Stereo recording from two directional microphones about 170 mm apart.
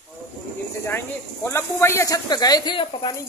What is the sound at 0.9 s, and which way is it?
Speech, 10° left (ahead or behind).